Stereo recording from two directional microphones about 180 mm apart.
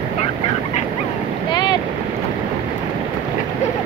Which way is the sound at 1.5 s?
25° left (ahead or behind).